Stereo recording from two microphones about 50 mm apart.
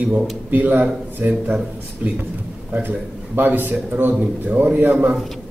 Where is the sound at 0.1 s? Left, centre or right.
Right.